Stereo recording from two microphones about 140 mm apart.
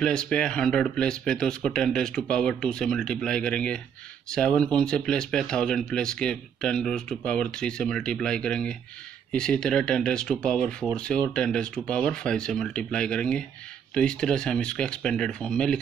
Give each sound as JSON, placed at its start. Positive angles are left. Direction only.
{"t": 0.0, "sound": "speech", "side_deg": 5}